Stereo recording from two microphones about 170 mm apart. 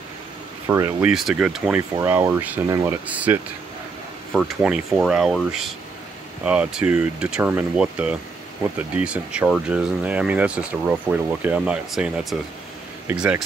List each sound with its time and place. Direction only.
0.7 s speech: 15° right (ahead or behind)
1.0 s speech: 5° right (ahead or behind)